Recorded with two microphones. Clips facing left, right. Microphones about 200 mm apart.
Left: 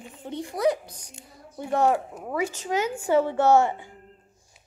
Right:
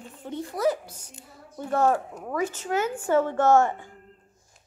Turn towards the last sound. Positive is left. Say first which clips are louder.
# even
turn(degrees=15)  # may be behind; listen again after turning